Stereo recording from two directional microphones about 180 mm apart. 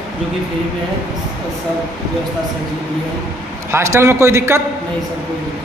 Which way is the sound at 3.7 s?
15° right (ahead or behind).